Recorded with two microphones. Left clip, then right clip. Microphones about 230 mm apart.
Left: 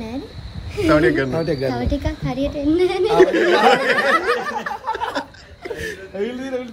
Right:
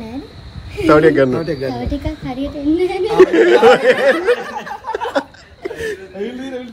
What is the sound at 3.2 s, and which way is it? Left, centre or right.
Speech, centre.